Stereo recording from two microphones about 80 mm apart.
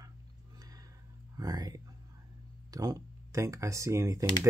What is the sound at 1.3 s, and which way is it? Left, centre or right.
Speech, right.